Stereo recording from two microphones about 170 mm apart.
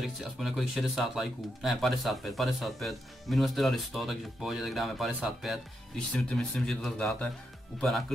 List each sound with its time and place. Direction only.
0.0 s speech: centre (ahead or behind)